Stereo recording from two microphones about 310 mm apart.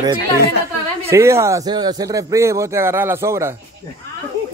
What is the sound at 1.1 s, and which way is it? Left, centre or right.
A man's voice, centre.